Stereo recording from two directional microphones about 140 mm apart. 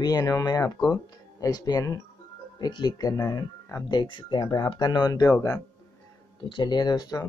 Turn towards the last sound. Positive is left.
turn(degrees=30)  # may be behind; listen again after turning